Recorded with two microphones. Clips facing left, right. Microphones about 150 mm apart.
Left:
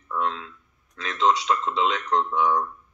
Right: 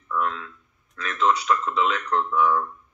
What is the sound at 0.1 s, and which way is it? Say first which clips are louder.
Speech: right 1 dB; 25° left (ahead or behind).